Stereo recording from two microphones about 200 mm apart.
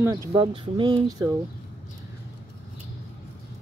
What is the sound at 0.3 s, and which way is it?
Speech, 25° right (ahead or behind).